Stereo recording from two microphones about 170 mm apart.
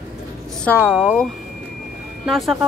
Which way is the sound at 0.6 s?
10° left (ahead or behind).